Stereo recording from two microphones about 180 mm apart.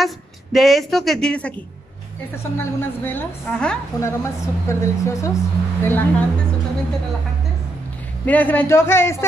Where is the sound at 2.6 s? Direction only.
10° left (ahead or behind).